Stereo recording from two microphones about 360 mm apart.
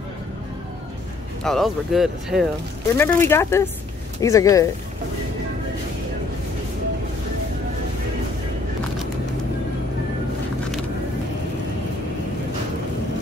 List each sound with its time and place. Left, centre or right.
1.4 s speech: centre